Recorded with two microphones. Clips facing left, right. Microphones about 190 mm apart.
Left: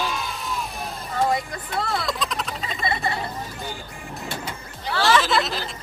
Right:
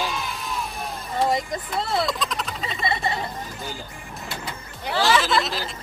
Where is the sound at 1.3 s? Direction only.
20° right (ahead or behind).